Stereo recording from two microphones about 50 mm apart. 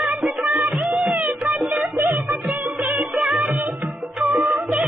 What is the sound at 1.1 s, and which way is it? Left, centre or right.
Music, right.